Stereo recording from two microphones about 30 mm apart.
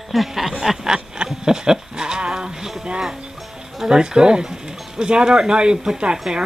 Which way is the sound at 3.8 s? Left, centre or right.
Right.